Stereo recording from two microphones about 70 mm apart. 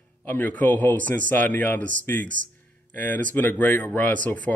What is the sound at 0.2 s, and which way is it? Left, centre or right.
Speech, left.